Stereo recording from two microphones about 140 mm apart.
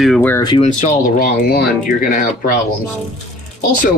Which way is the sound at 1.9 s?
75° left (ahead or behind).